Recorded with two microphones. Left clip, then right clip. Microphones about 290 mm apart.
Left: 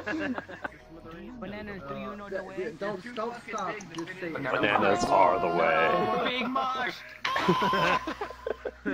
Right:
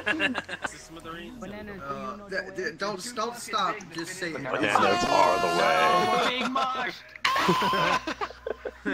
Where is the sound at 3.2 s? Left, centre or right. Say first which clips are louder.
Right 3 dB; right.